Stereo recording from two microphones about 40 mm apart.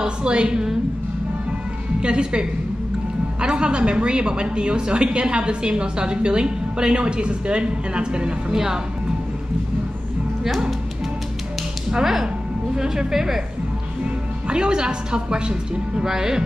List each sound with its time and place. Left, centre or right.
0.0 s a woman's voice: right
2.0 s a woman's voice: right
11.9 s speech: centre
14.5 s a woman's voice: right